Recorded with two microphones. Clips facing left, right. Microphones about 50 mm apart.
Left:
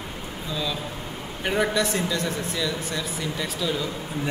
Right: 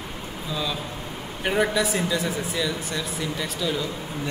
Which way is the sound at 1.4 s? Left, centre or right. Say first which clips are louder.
Right 1 dB; centre.